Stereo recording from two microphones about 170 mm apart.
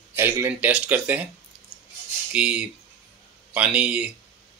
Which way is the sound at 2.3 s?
5° right (ahead or behind).